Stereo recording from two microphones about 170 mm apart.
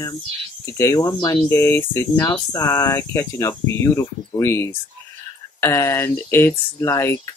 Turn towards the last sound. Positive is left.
turn(degrees=15)  # may be behind; listen again after turning